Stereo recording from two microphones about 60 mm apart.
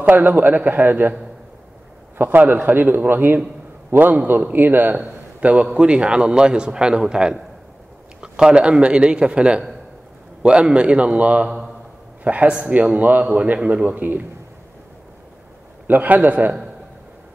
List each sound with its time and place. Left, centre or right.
0.0 s a man's voice: right
2.1 s a man's voice: right
15.9 s a man's voice: right